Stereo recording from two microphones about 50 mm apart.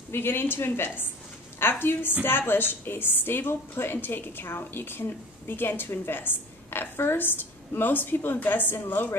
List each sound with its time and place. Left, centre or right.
0.1 s a woman's voice: left